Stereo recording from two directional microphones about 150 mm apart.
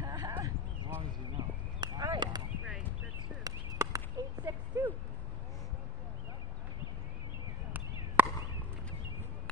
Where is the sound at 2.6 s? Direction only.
5° right (ahead or behind).